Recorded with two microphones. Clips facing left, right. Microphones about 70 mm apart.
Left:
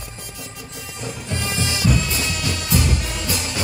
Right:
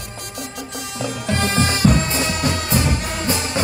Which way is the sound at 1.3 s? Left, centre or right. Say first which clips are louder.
Right 6 dB; right.